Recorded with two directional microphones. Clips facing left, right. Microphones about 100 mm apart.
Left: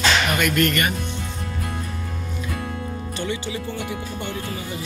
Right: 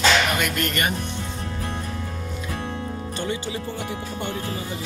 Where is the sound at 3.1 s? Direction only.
35° right (ahead or behind).